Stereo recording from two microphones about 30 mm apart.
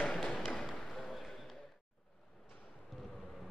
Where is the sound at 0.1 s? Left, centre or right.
Centre.